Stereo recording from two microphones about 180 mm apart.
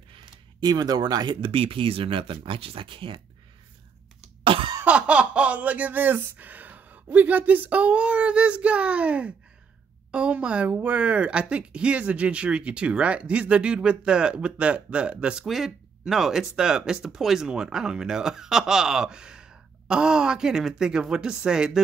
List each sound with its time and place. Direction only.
0.1 s speech: 25° right (ahead or behind)
4.5 s cough: 30° right (ahead or behind)
4.7 s speech: 5° right (ahead or behind)